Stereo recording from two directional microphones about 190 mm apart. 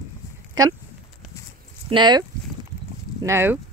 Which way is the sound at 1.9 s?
25° right (ahead or behind).